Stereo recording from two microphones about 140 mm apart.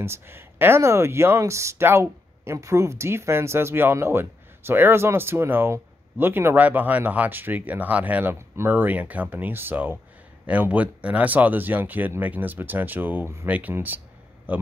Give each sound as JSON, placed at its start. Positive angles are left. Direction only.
{"t": 0.0, "sound": "speech", "side_deg": -15}